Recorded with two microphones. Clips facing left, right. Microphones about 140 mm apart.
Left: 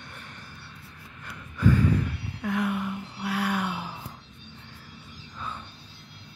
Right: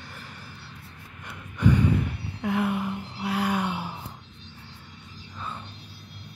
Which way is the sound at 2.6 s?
20° right (ahead or behind).